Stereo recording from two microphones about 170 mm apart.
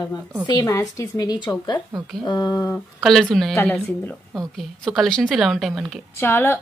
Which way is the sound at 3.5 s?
10° left (ahead or behind).